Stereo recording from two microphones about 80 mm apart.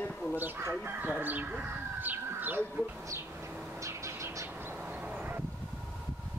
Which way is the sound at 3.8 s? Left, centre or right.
Right.